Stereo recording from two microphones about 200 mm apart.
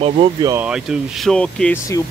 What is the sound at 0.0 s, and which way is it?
Speech, 30° right (ahead or behind).